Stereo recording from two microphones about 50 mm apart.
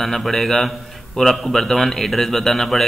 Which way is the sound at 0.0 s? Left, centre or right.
Centre.